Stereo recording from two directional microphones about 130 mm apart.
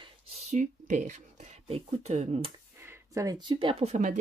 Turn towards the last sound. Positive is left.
turn(degrees=-65)  # may be behind; listen again after turning